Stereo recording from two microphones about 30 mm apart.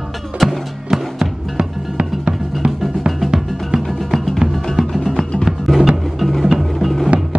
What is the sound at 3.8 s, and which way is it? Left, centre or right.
Music, centre.